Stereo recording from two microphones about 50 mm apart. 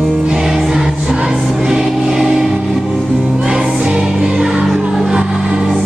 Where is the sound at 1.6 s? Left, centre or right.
Centre.